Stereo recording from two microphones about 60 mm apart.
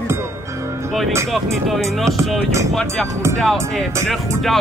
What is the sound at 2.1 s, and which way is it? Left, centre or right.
Music, right.